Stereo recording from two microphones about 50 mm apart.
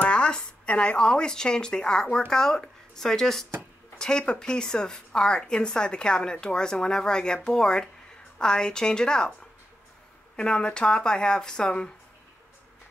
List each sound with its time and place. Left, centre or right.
0.0 s a woman's voice: centre